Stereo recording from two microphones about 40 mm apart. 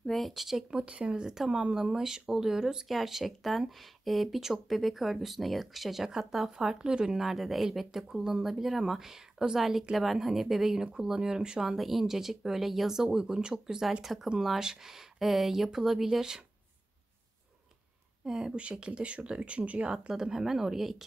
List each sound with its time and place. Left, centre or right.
0.0 s speech: centre
0.8 s speech: right
1.1 s speech: centre
9.6 s speech: centre
11.7 s speech: centre
14.0 s speech: centre
18.2 s speech: centre; by 19.9 s right
20.1 s speech: centre